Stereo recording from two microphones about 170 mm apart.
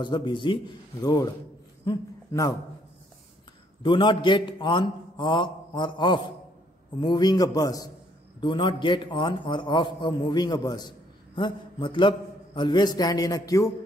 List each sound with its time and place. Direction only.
0.0 s a man's voice: 25° left (ahead or behind)
3.8 s a man's voice: 30° left (ahead or behind)